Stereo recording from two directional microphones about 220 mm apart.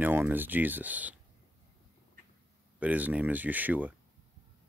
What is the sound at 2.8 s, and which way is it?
Speech, 5° right (ahead or behind).